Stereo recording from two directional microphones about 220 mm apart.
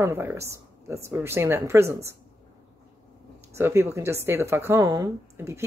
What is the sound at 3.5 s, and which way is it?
Speech, 10° right (ahead or behind).